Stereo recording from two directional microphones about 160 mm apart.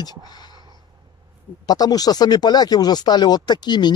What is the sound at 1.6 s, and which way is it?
Speech, 25° left (ahead or behind).